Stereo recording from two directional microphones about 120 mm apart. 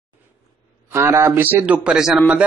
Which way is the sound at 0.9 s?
20° right (ahead or behind).